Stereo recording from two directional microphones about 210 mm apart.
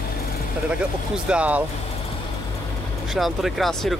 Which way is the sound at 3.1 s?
Centre (ahead or behind).